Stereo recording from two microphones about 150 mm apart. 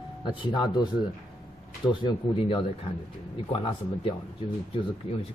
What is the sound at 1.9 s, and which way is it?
Speech, 35° left (ahead or behind).